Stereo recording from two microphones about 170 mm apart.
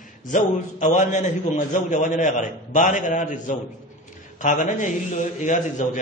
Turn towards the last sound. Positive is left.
turn(degrees=45)  # may be behind; listen again after turning